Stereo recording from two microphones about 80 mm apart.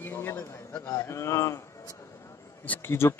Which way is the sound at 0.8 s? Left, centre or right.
Left.